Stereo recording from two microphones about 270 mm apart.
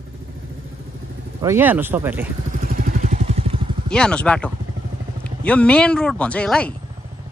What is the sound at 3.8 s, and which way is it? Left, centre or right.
Speech, centre.